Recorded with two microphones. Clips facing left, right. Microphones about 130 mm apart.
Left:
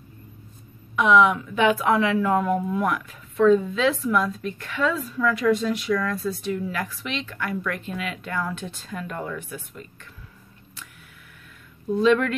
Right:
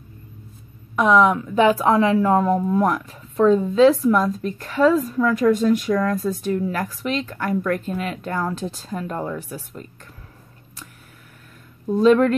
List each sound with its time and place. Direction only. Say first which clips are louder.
0.9 s a woman's voice: right 2 dB; 40° right (ahead or behind)
11.9 s a woman's voice: right 5 dB; 40° right (ahead or behind)